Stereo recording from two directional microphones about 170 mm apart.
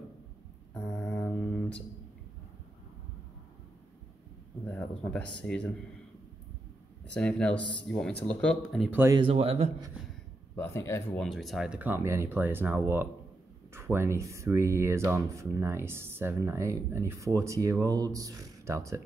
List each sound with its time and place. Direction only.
0.7 s mantra: 5° left (ahead or behind)
4.6 s speech: 10° left (ahead or behind)
7.2 s speech: 5° left (ahead or behind)
8.9 s speech: 15° right (ahead or behind)
9.2 s a man's voice: 35° right (ahead or behind)
10.5 s speech: 15° left (ahead or behind); by 18.9 s 20° right (ahead or behind)